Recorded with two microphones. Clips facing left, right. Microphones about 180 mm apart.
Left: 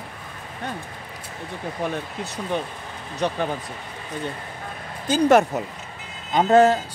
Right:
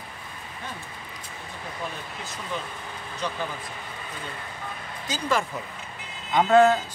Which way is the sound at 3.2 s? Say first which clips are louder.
Left 7 dB; 65° left (ahead or behind).